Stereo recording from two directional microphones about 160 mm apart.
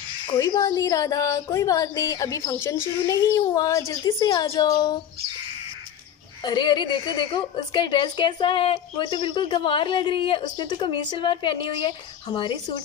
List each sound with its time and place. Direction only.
0.3 s speech: 25° left (ahead or behind)
6.4 s a woman's voice: 25° left (ahead or behind)